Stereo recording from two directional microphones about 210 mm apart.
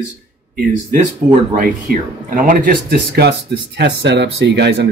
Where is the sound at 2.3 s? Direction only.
40° right (ahead or behind).